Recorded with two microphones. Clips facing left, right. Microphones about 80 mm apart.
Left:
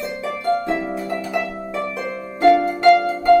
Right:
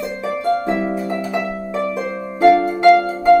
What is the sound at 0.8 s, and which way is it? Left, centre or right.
Harp, centre.